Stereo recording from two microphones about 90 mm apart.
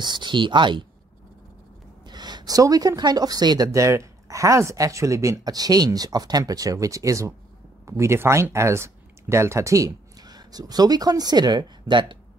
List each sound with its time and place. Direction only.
0.0 s speech: 55° right (ahead or behind)
2.0 s speech: 50° right (ahead or behind)